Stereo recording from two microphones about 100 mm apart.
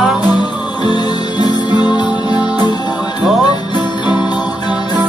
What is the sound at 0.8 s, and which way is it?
Music, 45° left (ahead or behind).